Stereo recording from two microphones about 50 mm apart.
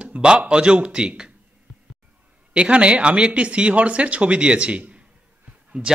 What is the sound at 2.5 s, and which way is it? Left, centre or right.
Speech, right.